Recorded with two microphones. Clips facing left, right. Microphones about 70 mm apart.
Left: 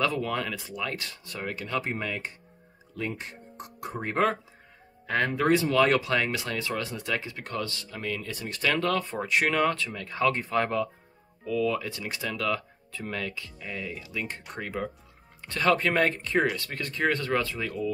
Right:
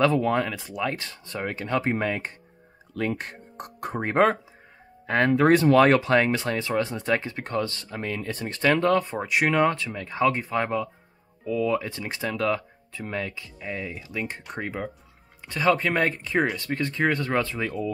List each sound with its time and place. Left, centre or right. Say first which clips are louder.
0.0 s speech: right 6 dB; right
1.9 s speech: right 6 dB; right
5.4 s speech: right 5 dB; right
10.3 s speech: right 1 dB; centre
11.4 s speech: right 2 dB; right
15.4 s speech: right 2 dB; centre
16.5 s speech: right 6 dB; right